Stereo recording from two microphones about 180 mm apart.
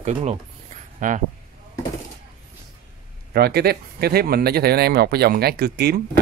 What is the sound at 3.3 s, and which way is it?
Speech, 60° right (ahead or behind).